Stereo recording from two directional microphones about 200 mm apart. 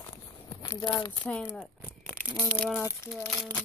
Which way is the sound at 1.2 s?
5° left (ahead or behind).